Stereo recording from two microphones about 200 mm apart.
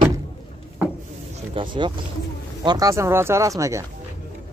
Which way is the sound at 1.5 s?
25° right (ahead or behind).